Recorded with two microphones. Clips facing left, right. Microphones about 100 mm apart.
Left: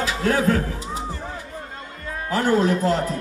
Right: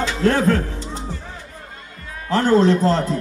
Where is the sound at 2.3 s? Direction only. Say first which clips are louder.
Right 4 dB; 10° left (ahead or behind).